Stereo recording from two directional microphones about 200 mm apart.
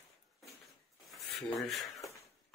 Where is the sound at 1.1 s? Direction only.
Centre (ahead or behind).